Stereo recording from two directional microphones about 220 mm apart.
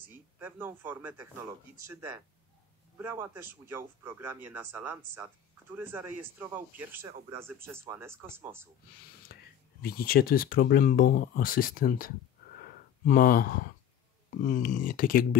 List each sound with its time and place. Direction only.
0.4 s a man's voice: 10° right (ahead or behind)
3.0 s a man's voice: 10° right (ahead or behind)
9.2 s speech: 45° left (ahead or behind)
12.6 s a sound: 40° left (ahead or behind)
14.4 s speech: 35° left (ahead or behind)